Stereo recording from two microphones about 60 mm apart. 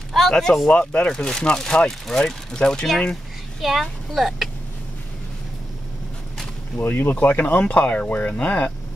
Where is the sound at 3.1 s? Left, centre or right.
Centre.